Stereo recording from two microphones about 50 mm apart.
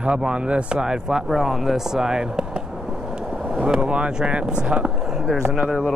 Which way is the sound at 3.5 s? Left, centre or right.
Centre.